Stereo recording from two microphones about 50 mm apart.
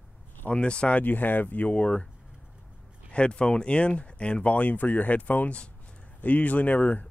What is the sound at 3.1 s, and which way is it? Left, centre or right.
Speech, left.